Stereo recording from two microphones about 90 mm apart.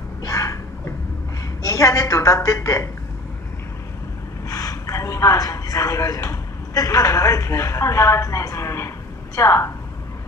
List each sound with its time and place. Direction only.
0.2 s a sound: 40° left (ahead or behind)
1.6 s a woman's voice: 40° left (ahead or behind)
4.5 s speech: 40° left (ahead or behind)